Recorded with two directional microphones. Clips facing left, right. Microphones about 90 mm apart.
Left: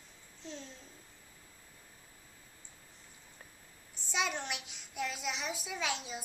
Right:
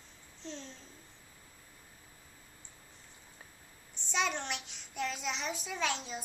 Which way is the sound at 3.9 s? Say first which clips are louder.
Right 2 dB; 5° left (ahead or behind).